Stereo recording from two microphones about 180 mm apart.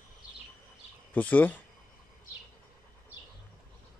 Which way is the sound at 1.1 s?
10° left (ahead or behind).